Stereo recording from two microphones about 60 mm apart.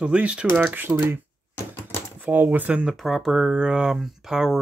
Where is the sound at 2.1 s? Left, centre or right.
Right.